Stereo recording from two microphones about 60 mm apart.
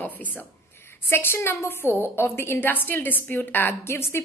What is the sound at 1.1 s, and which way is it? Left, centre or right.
A woman's voice, left.